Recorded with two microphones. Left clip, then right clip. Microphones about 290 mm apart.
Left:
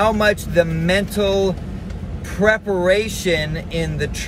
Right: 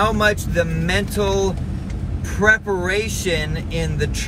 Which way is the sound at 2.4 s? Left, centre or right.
Centre.